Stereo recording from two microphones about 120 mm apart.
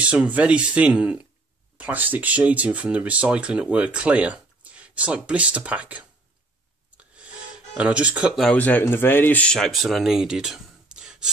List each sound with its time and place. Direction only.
0.0 s speech: 10° right (ahead or behind)
7.0 s gasp: 10° right (ahead or behind)
8.5 s speech: 15° left (ahead or behind); by 11.2 s 5° right (ahead or behind)